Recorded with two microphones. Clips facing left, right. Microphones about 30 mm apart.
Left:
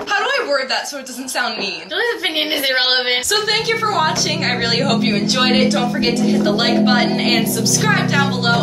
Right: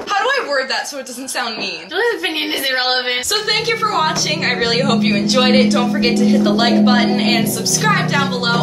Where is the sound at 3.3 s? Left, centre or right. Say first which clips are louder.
Even; centre.